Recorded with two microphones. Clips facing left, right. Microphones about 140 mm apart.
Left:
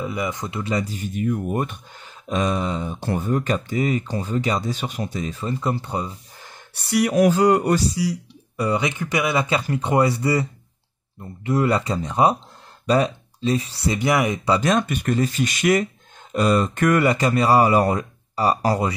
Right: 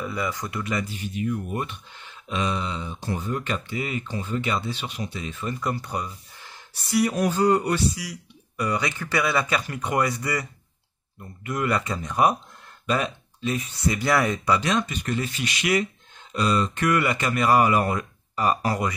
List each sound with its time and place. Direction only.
0.0 s speech: 20° left (ahead or behind)
6.7 s speech: 65° left (ahead or behind); by 7.6 s 80° left
7.6 s speech: 40° left (ahead or behind)
13.8 s speech: 20° left (ahead or behind)
14.6 s speech: 45° left (ahead or behind)
15.1 s speech: 40° left (ahead or behind)